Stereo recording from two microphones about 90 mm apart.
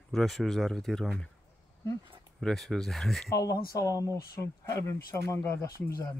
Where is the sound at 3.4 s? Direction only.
40° left (ahead or behind).